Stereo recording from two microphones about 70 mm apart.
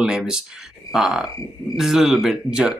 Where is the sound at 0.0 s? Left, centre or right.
Centre.